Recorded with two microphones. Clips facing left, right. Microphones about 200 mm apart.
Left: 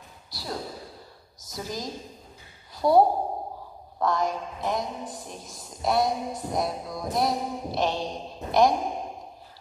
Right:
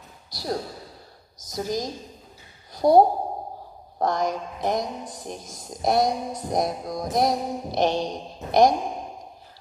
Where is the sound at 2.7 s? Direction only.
45° right (ahead or behind).